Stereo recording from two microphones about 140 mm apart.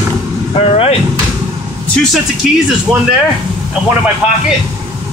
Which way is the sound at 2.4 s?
Centre (ahead or behind).